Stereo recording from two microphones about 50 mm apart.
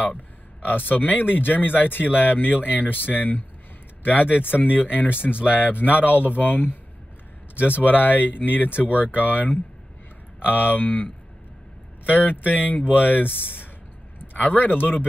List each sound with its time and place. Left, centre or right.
0.7 s speech: left
12.1 s speech: left
14.3 s speech: left